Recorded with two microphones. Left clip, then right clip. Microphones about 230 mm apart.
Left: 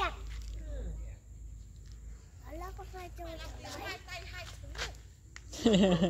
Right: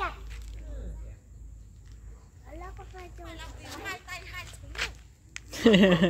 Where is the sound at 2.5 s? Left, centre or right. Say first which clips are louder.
Even; left.